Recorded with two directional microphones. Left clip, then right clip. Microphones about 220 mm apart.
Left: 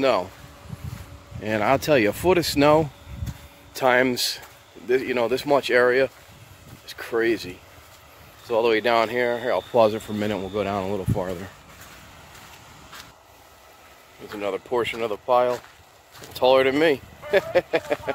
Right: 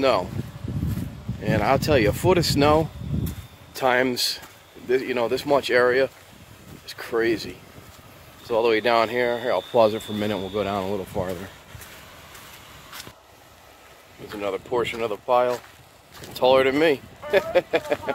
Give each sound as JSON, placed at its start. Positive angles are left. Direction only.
{"t": 0.0, "sound": "speech", "side_deg": 5}
{"t": 1.4, "sound": "speech", "side_deg": 10}
{"t": 14.3, "sound": "speech", "side_deg": 10}